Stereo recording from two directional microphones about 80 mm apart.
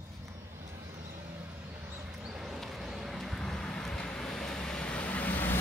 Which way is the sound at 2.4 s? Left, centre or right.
Centre.